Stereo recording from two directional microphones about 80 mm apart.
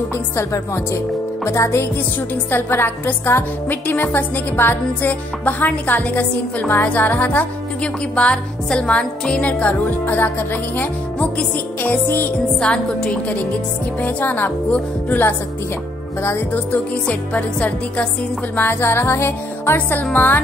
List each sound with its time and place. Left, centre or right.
1.4 s music: left
2.5 s a woman's voice: left
6.7 s music: left
10.2 s a woman's voice: left
12.5 s music: centre
14.0 s a woman's voice: left
16.2 s music: left
16.5 s a woman's voice: centre
18.6 s music: left
20.0 s a woman's voice: left